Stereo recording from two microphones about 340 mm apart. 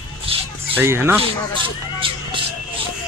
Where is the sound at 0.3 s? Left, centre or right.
Centre.